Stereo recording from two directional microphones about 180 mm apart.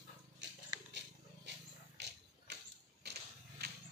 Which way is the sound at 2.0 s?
70° right (ahead or behind).